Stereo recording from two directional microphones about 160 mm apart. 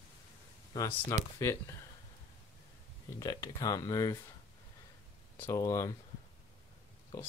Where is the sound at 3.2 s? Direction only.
25° left (ahead or behind).